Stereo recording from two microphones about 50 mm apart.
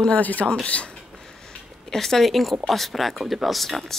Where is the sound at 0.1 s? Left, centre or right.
Left.